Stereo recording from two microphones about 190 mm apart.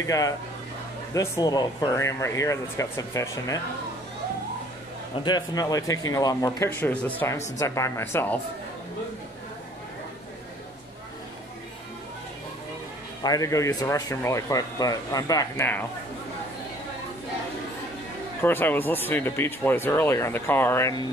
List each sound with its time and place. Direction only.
0.0 s speech: 15° left (ahead or behind)
5.2 s speech: 20° left (ahead or behind)
13.2 s speech: 20° left (ahead or behind)
18.4 s speech: 10° left (ahead or behind)